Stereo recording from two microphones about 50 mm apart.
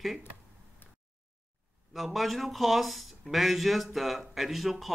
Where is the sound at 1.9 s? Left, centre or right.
Centre.